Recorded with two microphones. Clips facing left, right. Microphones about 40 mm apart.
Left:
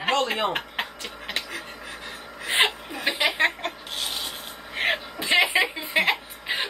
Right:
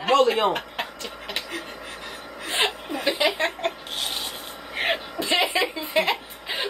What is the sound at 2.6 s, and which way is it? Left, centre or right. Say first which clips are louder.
Chuckle: left 2 dB; left.